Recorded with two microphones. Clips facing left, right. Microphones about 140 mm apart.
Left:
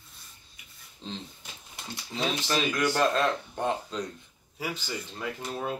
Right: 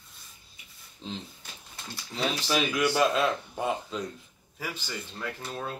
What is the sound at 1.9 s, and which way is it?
Speech, 20° left (ahead or behind).